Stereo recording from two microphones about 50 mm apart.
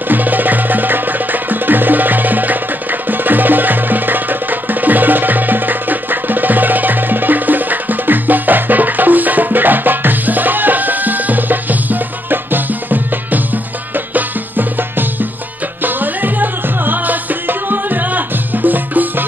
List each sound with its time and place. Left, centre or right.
0.1 s music: right